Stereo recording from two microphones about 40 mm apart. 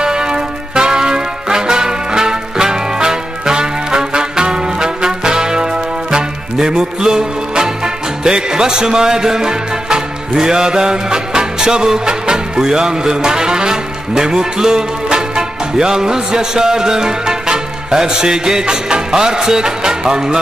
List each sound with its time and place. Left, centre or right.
0.0 s music: centre